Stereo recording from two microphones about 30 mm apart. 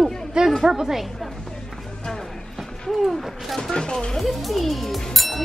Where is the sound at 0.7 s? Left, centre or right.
Centre.